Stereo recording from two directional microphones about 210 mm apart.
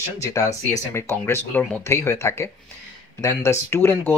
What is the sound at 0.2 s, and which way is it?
Speech, 15° left (ahead or behind).